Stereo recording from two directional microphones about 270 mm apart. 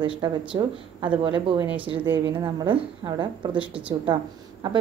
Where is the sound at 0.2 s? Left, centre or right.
Centre.